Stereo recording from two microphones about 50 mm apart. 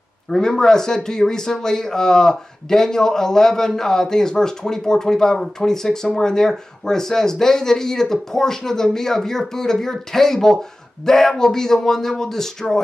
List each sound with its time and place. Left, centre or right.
0.3 s speech: centre